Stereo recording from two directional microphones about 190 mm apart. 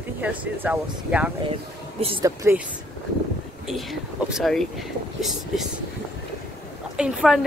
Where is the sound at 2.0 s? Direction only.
30° right (ahead or behind).